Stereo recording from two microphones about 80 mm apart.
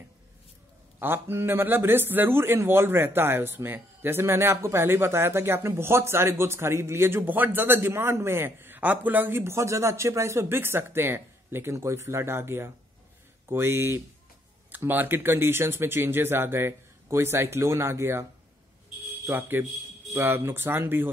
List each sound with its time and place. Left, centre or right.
0.9 s a man's voice: right
19.2 s a man's voice: right